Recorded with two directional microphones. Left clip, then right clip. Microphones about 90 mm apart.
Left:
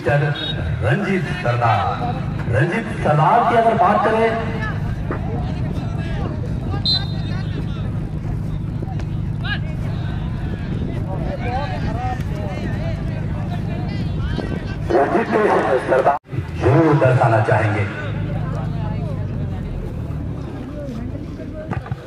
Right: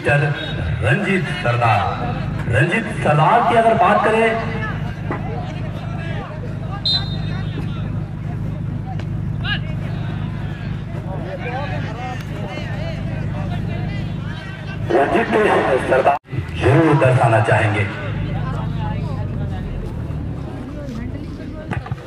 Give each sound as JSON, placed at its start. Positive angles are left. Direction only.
{"t": 0.0, "sound": "a man's voice", "side_deg": -20}
{"t": 14.9, "sound": "speech", "side_deg": -35}